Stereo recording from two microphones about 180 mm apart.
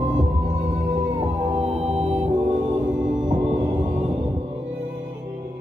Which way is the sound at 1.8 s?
35° right (ahead or behind).